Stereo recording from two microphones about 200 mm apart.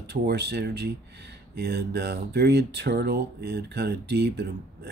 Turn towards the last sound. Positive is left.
turn(degrees=-55)  # may be behind; listen again after turning